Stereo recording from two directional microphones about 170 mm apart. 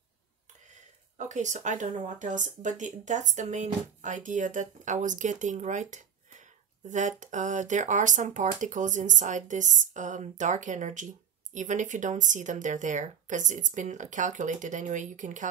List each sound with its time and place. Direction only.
1.1 s speech: 45° right (ahead or behind)